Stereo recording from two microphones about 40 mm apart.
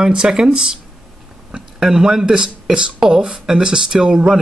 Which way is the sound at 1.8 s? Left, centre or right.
Centre.